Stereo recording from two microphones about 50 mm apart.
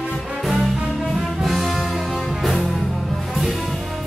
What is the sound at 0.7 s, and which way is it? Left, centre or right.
Music, centre.